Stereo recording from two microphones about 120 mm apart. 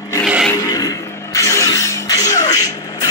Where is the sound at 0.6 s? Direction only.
30° left (ahead or behind).